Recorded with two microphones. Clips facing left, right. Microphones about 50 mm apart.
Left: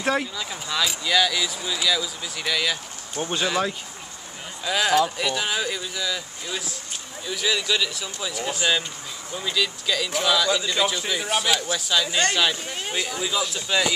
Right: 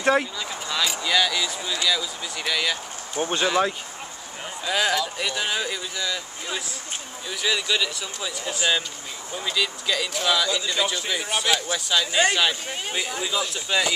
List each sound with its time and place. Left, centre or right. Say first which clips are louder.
0.0 s speech: right 3 dB; centre
7.2 s speech: left 1 dB; centre